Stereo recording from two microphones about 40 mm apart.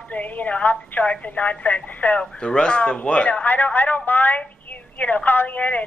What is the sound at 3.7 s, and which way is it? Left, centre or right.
A woman's voice, left.